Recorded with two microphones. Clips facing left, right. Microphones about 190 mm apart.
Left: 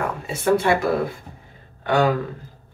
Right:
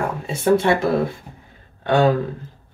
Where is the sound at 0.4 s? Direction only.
25° right (ahead or behind).